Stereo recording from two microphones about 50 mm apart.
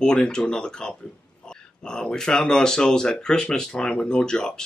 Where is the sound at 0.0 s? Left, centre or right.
Centre.